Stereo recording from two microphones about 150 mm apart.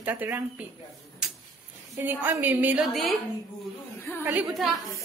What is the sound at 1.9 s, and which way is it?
Speech, 15° right (ahead or behind).